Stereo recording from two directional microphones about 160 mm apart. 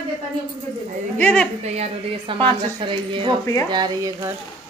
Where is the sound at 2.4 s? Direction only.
30° right (ahead or behind).